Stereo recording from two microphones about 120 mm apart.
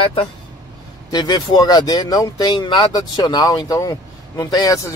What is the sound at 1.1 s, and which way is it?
Speech, 35° left (ahead or behind).